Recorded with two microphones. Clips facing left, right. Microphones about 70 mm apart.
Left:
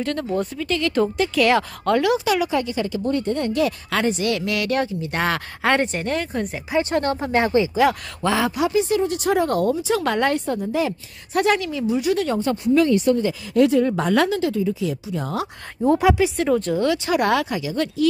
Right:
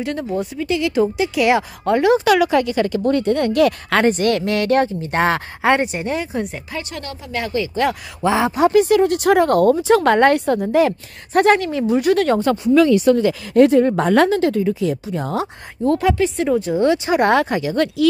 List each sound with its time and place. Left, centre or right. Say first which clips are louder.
0.0 s speech: right 1 dB; centre
2.2 s speech: right 6 dB; right; by 6.6 s centre
6.8 s speech: left 9 dB; left
8.2 s speech: right 4 dB; right
8.5 s speech: right 6 dB; right
8.8 s speech: right 6 dB; right
13.5 s speech: right 4 dB; right
14.9 s speech: right 4 dB; right
15.8 s speech: even; centre
16.4 s speech: right 2 dB; centre
16.8 s speech: right 4 dB; right